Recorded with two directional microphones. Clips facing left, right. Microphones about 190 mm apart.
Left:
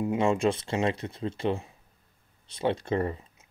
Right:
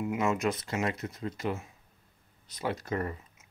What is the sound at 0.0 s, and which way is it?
Speech, 30° left (ahead or behind).